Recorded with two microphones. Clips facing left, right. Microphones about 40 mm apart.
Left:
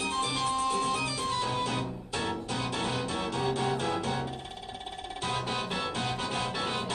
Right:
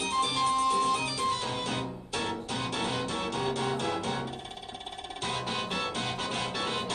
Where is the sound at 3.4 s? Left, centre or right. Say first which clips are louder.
Left 2 dB; centre.